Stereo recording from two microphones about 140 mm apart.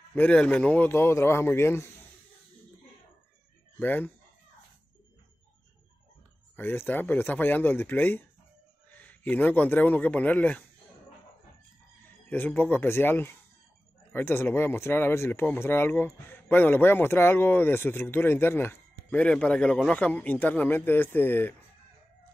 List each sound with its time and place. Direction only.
0.1 s speech: 10° left (ahead or behind)
3.8 s speech: 10° left (ahead or behind)
6.5 s a man's voice: 15° left (ahead or behind)
12.3 s speech: 15° left (ahead or behind)